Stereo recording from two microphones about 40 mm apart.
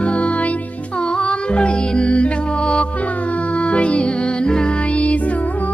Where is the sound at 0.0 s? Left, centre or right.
Left.